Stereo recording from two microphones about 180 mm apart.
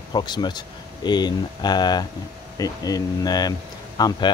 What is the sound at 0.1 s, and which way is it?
Speech, 25° left (ahead or behind).